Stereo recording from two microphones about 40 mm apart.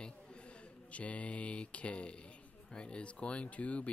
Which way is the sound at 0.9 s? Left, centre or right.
Left.